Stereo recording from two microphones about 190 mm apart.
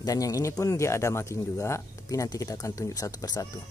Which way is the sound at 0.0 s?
20° left (ahead or behind).